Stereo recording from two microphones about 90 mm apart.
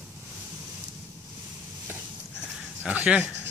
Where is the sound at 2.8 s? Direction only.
15° right (ahead or behind).